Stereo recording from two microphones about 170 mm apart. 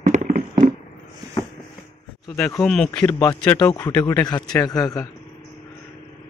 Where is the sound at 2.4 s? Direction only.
10° left (ahead or behind).